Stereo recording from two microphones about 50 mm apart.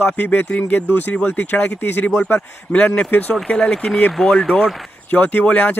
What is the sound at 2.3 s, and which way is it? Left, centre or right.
Speech, left.